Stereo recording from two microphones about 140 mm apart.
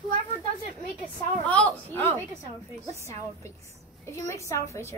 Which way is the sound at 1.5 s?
10° left (ahead or behind).